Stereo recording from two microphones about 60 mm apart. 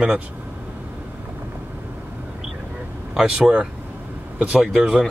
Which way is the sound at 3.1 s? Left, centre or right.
Centre.